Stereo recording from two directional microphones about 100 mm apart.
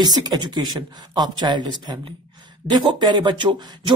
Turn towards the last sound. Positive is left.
turn(degrees=-55)  # may be behind; listen again after turning